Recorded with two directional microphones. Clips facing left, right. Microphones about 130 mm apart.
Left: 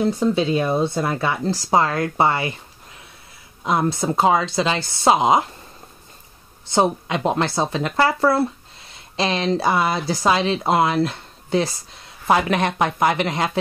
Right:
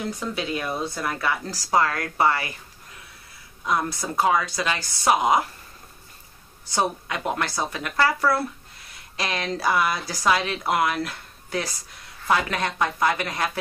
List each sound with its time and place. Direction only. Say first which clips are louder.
0.0 s speech: left 10 dB; 30° left (ahead or behind)
3.6 s speech: left 5 dB; 25° left (ahead or behind)
6.6 s speech: left 6 dB; 25° left (ahead or behind)